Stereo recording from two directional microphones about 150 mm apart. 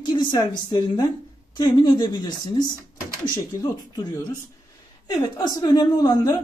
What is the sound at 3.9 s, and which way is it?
Speech, 25° left (ahead or behind).